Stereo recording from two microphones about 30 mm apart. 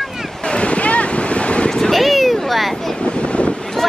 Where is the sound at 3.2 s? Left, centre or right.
Left.